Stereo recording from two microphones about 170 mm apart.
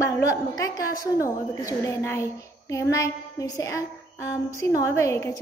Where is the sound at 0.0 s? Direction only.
20° left (ahead or behind).